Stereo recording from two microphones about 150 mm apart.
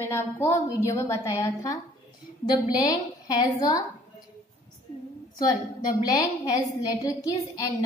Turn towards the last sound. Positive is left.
turn(degrees=25)  # may be behind; listen again after turning